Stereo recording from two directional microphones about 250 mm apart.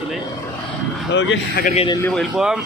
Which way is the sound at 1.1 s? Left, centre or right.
Left.